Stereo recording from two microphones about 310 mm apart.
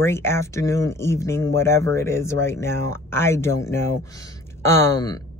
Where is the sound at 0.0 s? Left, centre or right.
Centre.